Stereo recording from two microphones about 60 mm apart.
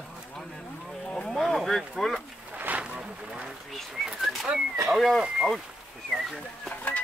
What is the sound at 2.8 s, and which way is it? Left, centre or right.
Speech, centre.